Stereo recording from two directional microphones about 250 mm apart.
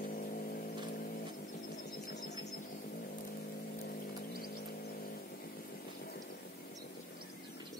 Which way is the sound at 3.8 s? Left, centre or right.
Left.